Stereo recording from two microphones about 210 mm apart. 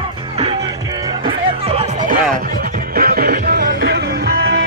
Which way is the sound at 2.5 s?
45° right (ahead or behind).